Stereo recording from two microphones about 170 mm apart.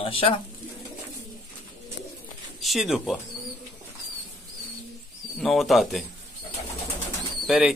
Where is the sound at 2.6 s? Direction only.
Centre (ahead or behind).